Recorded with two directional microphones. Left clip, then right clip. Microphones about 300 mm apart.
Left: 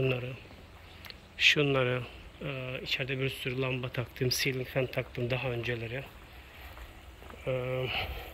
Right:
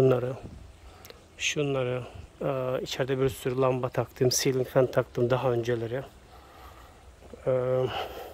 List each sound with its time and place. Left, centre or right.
0.1 s speech: centre
7.4 s speech: right